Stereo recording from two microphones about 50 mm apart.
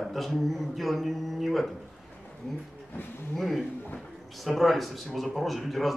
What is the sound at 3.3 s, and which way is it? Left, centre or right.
A man's voice, centre.